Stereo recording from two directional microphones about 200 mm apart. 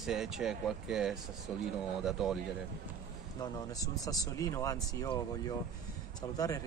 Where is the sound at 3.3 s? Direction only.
20° left (ahead or behind).